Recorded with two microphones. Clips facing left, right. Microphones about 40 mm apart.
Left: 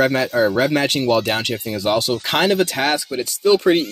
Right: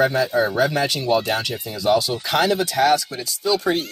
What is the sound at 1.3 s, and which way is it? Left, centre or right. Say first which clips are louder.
Speech: left 2 dB; left.